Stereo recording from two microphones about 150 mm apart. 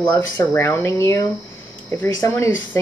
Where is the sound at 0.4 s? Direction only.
15° left (ahead or behind).